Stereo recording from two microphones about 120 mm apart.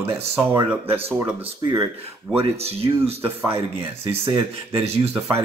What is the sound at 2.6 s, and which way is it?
Speech, 55° right (ahead or behind).